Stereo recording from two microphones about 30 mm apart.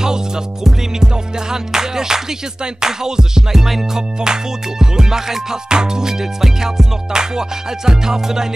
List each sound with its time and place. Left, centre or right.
0.9 s music: right
4.2 s music: right